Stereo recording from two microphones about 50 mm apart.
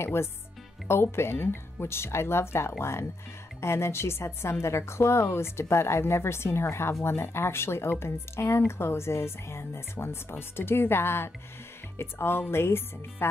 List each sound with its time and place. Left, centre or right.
0.0 s a woman's voice: left